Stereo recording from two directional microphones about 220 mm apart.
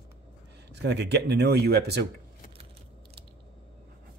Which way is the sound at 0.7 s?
50° right (ahead or behind).